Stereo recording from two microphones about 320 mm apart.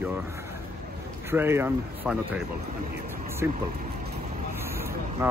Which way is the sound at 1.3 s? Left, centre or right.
Centre.